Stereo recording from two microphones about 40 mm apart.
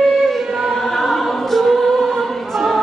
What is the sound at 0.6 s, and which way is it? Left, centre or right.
Choir, centre.